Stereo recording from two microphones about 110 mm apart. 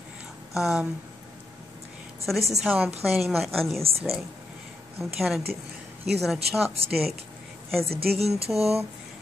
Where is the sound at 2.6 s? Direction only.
Centre (ahead or behind).